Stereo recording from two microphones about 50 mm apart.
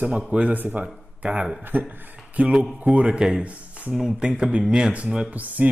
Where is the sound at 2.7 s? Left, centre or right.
Right.